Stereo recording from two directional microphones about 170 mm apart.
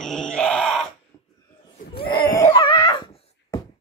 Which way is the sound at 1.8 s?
55° left (ahead or behind).